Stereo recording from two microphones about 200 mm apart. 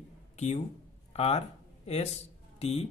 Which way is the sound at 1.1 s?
30° left (ahead or behind).